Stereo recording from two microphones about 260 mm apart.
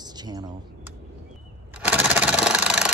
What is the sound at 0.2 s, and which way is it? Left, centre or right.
Speech, centre.